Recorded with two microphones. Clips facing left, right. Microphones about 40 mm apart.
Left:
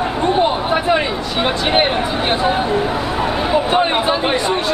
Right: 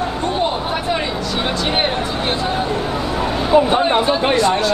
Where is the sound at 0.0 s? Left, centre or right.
Centre.